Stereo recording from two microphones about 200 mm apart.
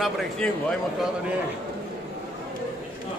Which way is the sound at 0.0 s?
Centre (ahead or behind).